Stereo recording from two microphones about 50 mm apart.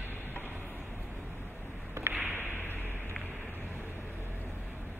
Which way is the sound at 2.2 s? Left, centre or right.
Right.